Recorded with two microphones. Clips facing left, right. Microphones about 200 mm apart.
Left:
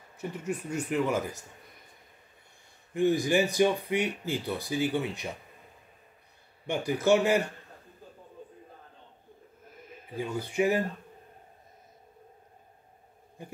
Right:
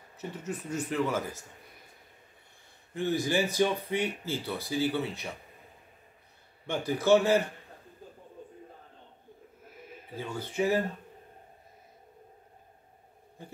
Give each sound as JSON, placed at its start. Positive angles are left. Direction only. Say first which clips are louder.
{"t": 0.4, "sound": "speech", "louder": "left 2 dB", "side_deg": 15}
{"t": 2.9, "sound": "speech", "louder": "left 4 dB", "side_deg": 15}
{"t": 6.6, "sound": "speech", "louder": "left 2 dB", "side_deg": 15}
{"t": 10.1, "sound": "speech", "louder": "left 3 dB", "side_deg": 15}